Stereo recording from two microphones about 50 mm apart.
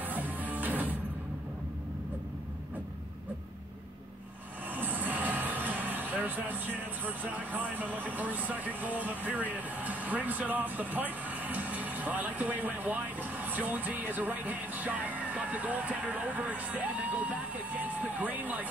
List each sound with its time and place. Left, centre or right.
0.0 s music: right
4.7 s speech: right